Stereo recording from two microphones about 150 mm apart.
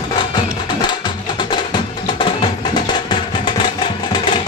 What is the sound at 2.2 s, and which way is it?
Music, 30° left (ahead or behind).